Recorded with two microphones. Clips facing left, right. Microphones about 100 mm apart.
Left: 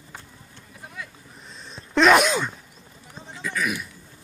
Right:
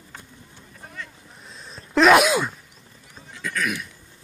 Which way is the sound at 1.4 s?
Centre (ahead or behind).